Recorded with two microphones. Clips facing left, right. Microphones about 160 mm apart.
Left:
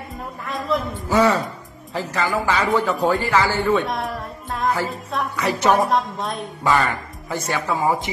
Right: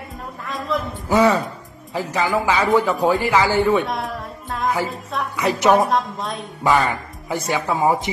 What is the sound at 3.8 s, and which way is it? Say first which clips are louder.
Music: even; centre (ahead or behind).